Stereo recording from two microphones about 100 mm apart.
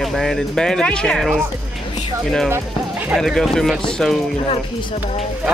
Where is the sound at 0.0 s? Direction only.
5° left (ahead or behind).